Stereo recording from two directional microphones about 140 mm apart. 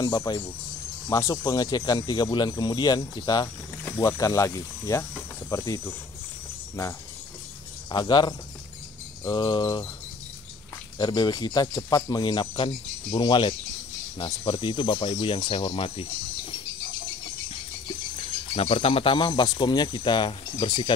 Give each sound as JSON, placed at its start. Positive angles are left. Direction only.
{"t": 0.0, "sound": "speech", "side_deg": 30}
{"t": 7.9, "sound": "speech", "side_deg": 30}
{"t": 11.0, "sound": "speech", "side_deg": 30}
{"t": 18.5, "sound": "speech", "side_deg": 45}